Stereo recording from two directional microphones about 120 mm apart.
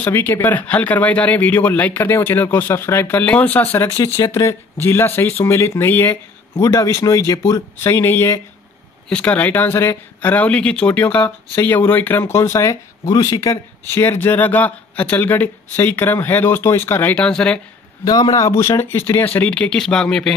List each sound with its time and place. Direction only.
0.0 s speech: 15° left (ahead or behind)
4.0 s speech: 30° left (ahead or behind)
17.1 s speech: 5° left (ahead or behind)
18.0 s speech: 30° left (ahead or behind); by 20.3 s 5° left (ahead or behind)